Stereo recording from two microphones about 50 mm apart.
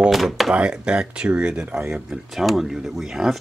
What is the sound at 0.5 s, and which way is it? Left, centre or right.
Speech, centre.